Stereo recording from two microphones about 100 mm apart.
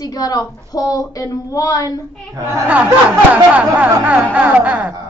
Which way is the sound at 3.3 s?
15° right (ahead or behind).